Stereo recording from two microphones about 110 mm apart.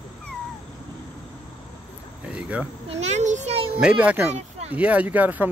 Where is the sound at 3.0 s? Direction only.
90° right; by 3.7 s 65° right (ahead or behind).